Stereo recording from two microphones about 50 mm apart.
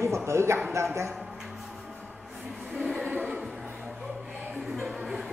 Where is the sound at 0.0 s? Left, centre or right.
Right.